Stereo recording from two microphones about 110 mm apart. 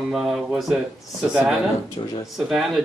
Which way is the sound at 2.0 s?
50° left (ahead or behind).